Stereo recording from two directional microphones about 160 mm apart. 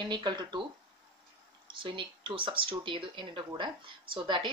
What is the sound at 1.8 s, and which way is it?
Speech, 30° right (ahead or behind).